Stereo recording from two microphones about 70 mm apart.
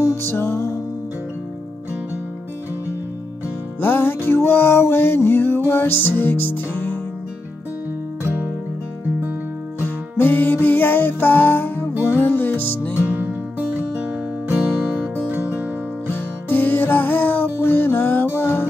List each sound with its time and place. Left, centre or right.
0.0 s music: left
3.8 s music: left
8.2 s music: right
9.8 s music: left
13.0 s music: right
16.4 s music: left